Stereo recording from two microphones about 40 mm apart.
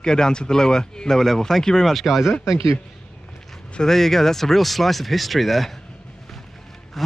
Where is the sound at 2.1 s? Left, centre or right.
Centre.